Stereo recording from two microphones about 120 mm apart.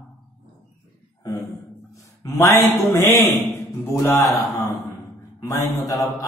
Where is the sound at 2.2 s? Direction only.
25° left (ahead or behind).